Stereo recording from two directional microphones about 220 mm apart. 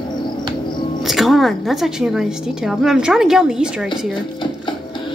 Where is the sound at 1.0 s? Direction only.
Centre (ahead or behind).